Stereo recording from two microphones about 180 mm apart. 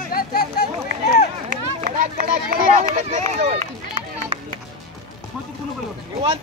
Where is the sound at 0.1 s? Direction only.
55° left (ahead or behind).